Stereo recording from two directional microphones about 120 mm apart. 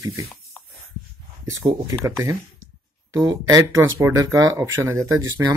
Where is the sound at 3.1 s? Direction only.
30° right (ahead or behind).